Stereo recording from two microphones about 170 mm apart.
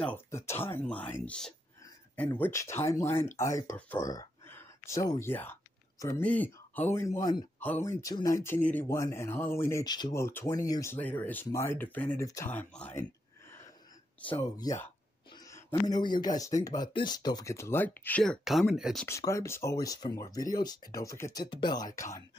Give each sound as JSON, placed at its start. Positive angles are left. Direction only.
{"t": 0.0, "sound": "speech", "side_deg": 15}
{"t": 4.1, "sound": "a sound", "side_deg": 15}
{"t": 6.2, "sound": "speech", "side_deg": 10}
{"t": 14.2, "sound": "speech", "side_deg": 15}
{"t": 19.0, "sound": "speech", "side_deg": 15}